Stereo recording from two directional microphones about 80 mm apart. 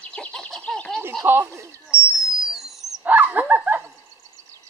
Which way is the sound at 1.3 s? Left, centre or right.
Right.